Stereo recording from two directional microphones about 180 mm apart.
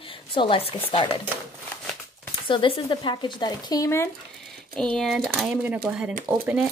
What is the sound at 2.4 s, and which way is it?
Speech, 30° left (ahead or behind).